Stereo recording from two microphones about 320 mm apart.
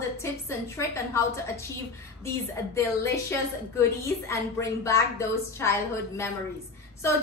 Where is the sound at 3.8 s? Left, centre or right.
Centre.